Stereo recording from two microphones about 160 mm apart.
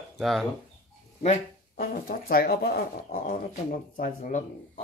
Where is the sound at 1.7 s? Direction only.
65° left (ahead or behind).